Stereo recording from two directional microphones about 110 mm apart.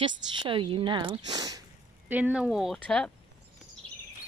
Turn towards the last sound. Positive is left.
turn(degrees=10)  # may be behind; listen again after turning